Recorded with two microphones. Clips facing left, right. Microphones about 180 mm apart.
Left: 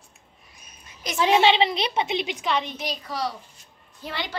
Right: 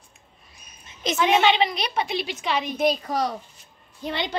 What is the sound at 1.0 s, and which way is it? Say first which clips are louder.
Speech: right 6 dB; 25° right (ahead or behind).